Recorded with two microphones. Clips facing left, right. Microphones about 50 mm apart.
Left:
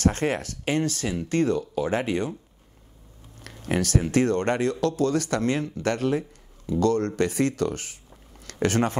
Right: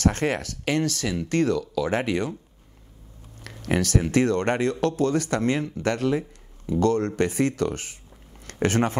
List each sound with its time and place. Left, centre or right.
0.0 s speech: right
1.9 s speech: right
3.4 s speech: right